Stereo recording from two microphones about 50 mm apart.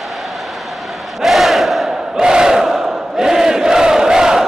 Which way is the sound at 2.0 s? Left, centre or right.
Centre.